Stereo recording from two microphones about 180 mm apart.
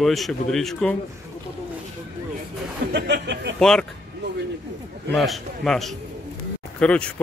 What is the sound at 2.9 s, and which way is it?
Speech, 70° right (ahead or behind).